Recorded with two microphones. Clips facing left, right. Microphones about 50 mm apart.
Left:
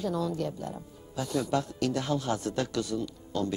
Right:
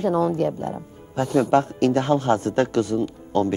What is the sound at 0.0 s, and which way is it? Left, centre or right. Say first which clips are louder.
Speech: right 10 dB; right.